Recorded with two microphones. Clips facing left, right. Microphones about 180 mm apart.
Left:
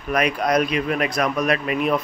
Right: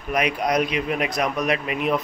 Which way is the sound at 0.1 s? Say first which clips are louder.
Left 2 dB; 20° right (ahead or behind).